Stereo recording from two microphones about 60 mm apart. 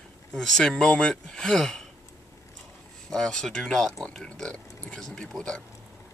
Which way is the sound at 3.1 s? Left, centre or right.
Centre.